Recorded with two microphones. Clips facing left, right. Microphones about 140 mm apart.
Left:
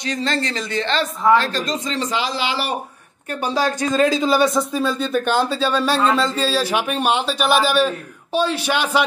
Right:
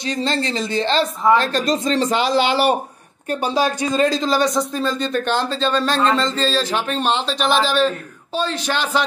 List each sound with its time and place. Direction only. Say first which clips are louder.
0.0 s speech: right 1 dB; 30° right (ahead or behind)
1.4 s speech: right 4 dB; 45° right (ahead or behind)
3.3 s speech: right 2 dB; 25° right (ahead or behind)
4.0 s speech: left 2 dB; 5° left (ahead or behind)